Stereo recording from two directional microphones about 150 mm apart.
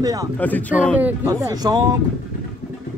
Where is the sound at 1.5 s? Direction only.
25° right (ahead or behind).